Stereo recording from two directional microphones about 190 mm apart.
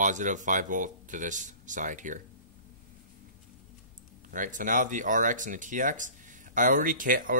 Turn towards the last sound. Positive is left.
turn(degrees=-45)  # may be behind; listen again after turning